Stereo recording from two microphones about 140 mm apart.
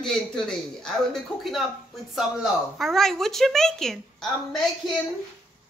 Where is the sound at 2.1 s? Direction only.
Centre (ahead or behind).